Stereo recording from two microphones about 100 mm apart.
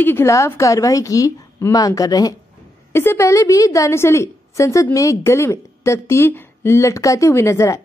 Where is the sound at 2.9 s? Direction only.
25° left (ahead or behind).